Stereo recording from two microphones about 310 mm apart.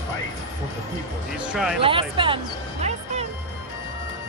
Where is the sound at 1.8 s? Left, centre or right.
Centre.